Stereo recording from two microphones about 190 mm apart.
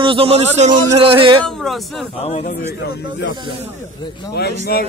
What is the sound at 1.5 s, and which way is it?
Speech, centre (ahead or behind).